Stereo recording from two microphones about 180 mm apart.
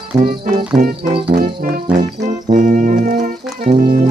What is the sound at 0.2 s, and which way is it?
Music, 50° right (ahead or behind).